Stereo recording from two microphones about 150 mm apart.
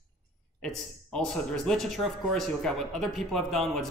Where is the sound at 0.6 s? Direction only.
5° left (ahead or behind).